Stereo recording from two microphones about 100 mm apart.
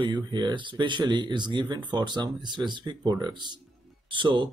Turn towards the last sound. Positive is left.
turn(degrees=-55)  # may be behind; listen again after turning